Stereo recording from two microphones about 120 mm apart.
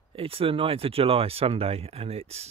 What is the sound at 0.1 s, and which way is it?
Speech, 50° right (ahead or behind).